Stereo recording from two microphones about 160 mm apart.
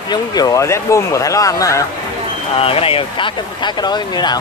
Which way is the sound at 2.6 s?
35° left (ahead or behind).